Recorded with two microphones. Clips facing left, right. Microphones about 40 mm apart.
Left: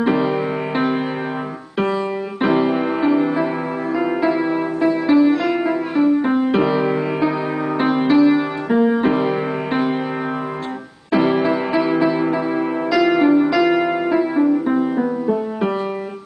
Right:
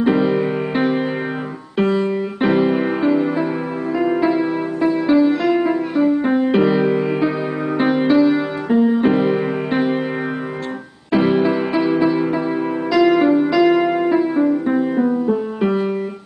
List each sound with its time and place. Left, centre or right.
0.0 s music: centre
8.6 s music: centre
9.0 s music: centre
11.1 s music: centre